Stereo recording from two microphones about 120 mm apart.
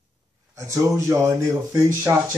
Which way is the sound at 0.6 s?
25° right (ahead or behind).